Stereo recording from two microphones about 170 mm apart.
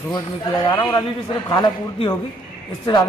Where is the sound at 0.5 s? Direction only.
20° left (ahead or behind).